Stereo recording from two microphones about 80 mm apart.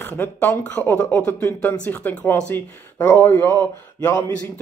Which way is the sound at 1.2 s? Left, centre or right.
Left.